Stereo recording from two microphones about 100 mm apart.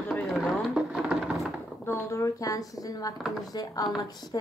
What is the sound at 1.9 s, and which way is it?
Speech, 30° left (ahead or behind).